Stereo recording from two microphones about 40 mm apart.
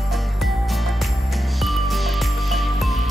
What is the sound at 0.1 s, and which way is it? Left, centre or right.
Music, centre.